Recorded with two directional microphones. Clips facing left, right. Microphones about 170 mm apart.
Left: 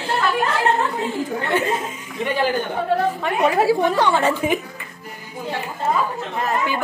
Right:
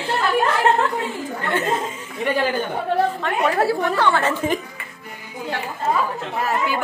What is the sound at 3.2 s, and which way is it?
A woman's voice, 10° left (ahead or behind).